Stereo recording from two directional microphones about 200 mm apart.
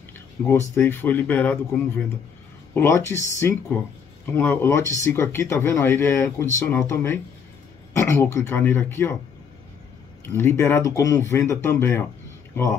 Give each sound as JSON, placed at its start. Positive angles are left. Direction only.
{"t": 0.4, "sound": "speech", "side_deg": 10}
{"t": 10.2, "sound": "speech", "side_deg": 10}